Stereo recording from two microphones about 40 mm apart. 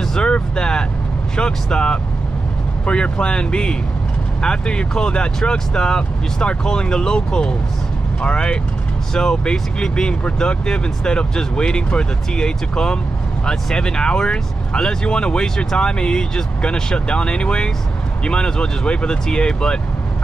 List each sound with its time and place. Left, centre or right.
0.0 s vehicle: centre
1.3 s speech: left